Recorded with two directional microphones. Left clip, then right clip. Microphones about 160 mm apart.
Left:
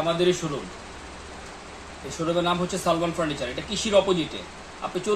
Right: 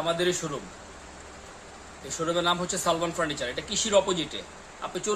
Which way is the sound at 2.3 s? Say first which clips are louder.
Left 2 dB; 15° right (ahead or behind).